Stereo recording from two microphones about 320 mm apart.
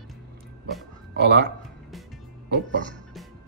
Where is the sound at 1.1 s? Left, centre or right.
Right.